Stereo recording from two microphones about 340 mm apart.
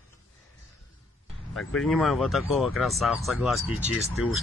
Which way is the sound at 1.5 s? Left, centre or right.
Centre.